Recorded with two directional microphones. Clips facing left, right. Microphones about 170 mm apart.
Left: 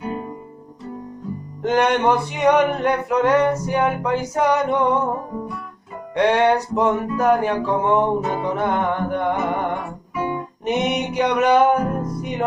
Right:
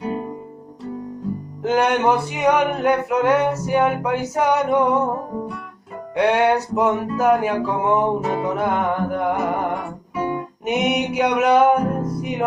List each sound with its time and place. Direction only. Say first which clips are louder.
1.6 s music: even; 5° right (ahead or behind)
6.1 s music: even; 5° right (ahead or behind)
10.1 s music: right 1 dB; 35° right (ahead or behind)
10.6 s music: right 1 dB; 5° right (ahead or behind)